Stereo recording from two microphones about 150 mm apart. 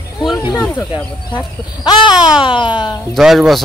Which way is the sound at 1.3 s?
25° left (ahead or behind).